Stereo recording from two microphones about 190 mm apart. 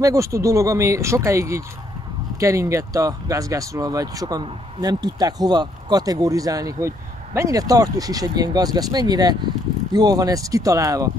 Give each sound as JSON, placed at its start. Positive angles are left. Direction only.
{"t": 0.0, "sound": "speech", "side_deg": -15}